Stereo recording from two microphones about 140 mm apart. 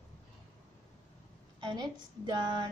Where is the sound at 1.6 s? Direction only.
30° right (ahead or behind).